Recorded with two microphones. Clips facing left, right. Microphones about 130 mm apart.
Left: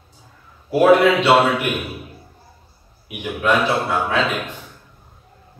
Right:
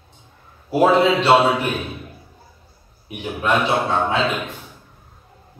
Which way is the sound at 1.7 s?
10° left (ahead or behind).